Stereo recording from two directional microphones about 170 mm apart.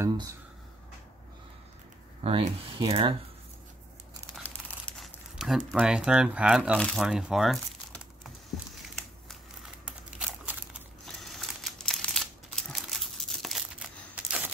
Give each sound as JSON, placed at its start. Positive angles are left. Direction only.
{"t": 0.0, "sound": "speech", "side_deg": -15}
{"t": 2.2, "sound": "speech", "side_deg": -35}
{"t": 4.4, "sound": "crumpling", "side_deg": 5}
{"t": 6.8, "sound": "speech", "side_deg": 0}
{"t": 9.8, "sound": "crumpling", "side_deg": -5}